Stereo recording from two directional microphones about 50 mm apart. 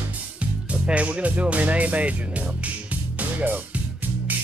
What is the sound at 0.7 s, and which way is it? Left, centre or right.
Speech, right.